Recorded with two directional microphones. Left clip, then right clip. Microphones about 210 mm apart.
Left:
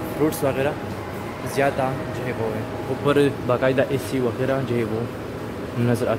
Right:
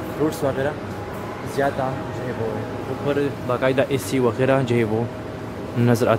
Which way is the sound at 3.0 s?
45° left (ahead or behind).